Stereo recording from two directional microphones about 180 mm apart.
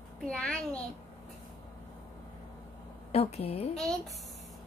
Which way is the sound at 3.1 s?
35° left (ahead or behind).